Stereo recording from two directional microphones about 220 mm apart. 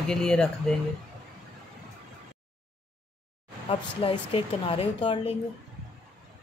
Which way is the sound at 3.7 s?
25° left (ahead or behind).